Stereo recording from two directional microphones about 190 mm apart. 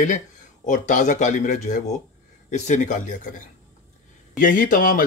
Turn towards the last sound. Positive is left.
turn(degrees=45)  # may be behind; listen again after turning